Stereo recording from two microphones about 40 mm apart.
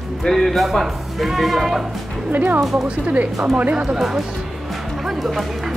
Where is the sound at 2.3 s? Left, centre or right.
Right.